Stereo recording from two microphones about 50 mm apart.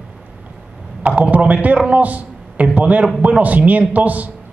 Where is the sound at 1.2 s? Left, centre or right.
Right.